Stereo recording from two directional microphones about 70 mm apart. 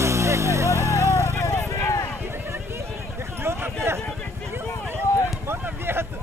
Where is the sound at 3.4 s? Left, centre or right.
Right.